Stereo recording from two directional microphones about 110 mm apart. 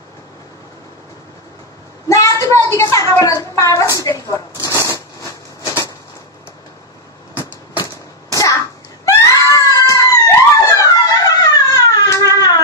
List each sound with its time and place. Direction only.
2.0 s a woman's voice: 30° left (ahead or behind)
3.9 s shuffling cards: 30° left (ahead or behind)
8.4 s a sound: 30° left (ahead or behind)